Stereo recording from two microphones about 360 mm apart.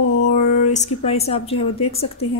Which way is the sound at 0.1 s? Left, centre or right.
Left.